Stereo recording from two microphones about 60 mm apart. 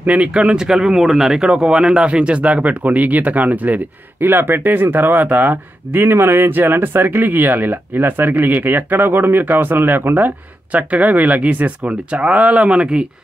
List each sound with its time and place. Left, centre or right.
0.0 s speech: right
4.2 s speech: right; by 13.0 s centre